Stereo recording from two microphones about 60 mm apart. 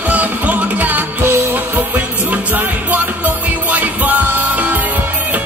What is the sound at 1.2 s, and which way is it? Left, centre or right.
Music, right.